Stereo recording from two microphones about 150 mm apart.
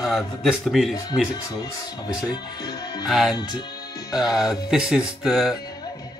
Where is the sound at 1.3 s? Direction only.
25° left (ahead or behind).